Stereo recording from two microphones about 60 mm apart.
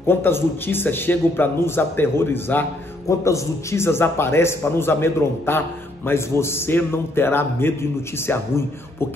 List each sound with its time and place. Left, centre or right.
0.0 s a man's voice: left
3.1 s a man's voice: left